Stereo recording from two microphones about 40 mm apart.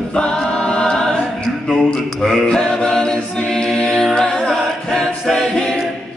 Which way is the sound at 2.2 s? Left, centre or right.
Centre.